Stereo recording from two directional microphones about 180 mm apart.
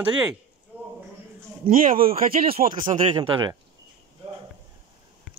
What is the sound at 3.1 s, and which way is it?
Speech, 25° right (ahead or behind).